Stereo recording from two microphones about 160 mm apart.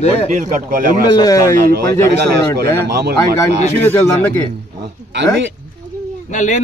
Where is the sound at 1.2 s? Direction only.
20° left (ahead or behind).